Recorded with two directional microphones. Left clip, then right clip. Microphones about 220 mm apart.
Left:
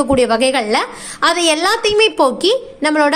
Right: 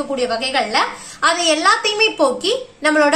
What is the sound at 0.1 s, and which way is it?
A woman's voice, 45° left (ahead or behind).